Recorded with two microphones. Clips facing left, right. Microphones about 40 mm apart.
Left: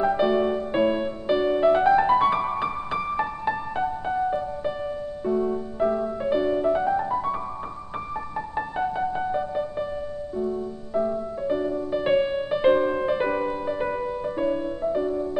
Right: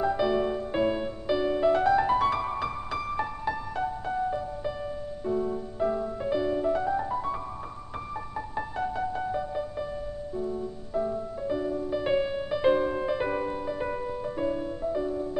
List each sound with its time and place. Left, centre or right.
0.0 s music: left
8.5 s music: left